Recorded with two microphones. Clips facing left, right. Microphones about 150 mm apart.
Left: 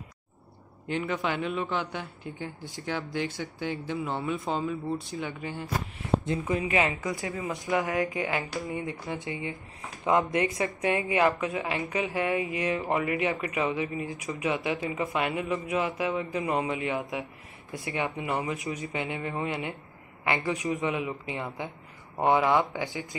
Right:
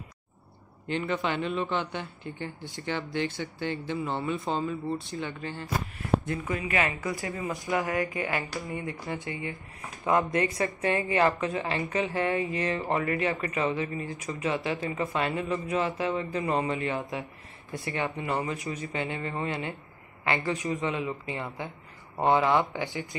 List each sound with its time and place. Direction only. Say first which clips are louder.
0.8 s speech: even; 5° left (ahead or behind)
6.2 s a woman's voice: left 3 dB; 25° left (ahead or behind)
7.3 s speech: left 2 dB; centre (ahead or behind)
7.9 s a woman's voice: left 1 dB; 15° left (ahead or behind)